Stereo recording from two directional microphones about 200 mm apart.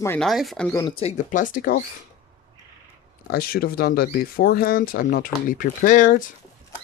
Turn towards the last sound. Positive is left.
turn(degrees=40)  # may be behind; listen again after turning